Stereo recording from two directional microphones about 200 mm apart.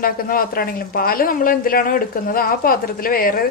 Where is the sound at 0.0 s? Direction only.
45° left (ahead or behind).